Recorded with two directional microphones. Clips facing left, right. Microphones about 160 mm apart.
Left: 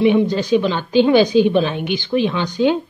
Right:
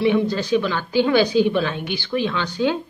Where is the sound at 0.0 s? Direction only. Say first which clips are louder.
Left 4 dB; 20° left (ahead or behind).